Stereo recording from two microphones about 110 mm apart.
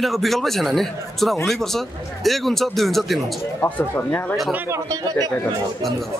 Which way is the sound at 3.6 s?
15° left (ahead or behind).